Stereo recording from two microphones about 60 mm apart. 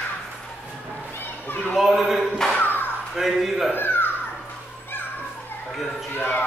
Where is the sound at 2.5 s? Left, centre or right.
Left.